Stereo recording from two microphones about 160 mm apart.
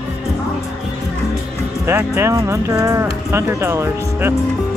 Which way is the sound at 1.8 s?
15° right (ahead or behind).